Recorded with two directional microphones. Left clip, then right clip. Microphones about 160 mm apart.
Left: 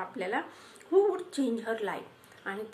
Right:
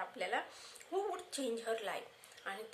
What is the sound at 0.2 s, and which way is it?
A woman's voice, 40° right (ahead or behind).